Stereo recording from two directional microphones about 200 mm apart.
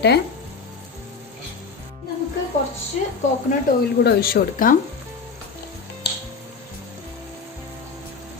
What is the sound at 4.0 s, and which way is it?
Speech, 50° left (ahead or behind).